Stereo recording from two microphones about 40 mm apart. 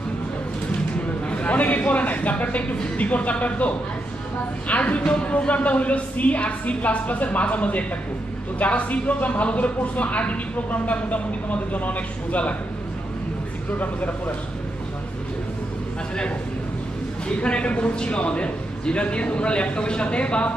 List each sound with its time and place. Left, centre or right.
1.3 s speech: left
13.7 s speech: left
17.4 s a man's voice: left